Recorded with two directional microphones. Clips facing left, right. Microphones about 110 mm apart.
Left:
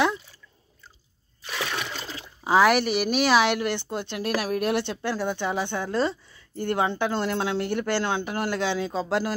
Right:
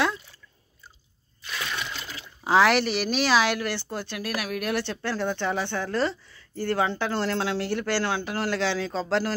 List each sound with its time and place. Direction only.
1.6 s water: 70° left (ahead or behind)
2.0 s a sound: 30° left (ahead or behind)
2.4 s speech: 10° left (ahead or behind)
4.4 s speech: 30° left (ahead or behind); by 9.3 s 15° left (ahead or behind)